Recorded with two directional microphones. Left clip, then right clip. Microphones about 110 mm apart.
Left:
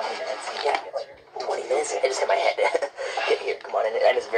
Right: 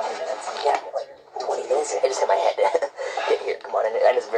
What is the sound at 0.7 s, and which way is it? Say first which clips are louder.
Radio: right 3 dB; 15° right (ahead or behind).